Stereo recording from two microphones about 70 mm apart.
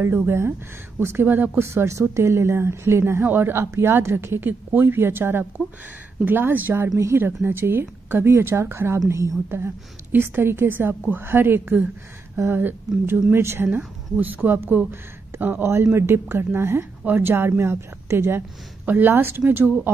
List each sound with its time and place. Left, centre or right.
0.3 s speech: right
1.7 s speech: right
9.0 s a woman's voice: right
10.1 s speech: right
13.7 s speech: right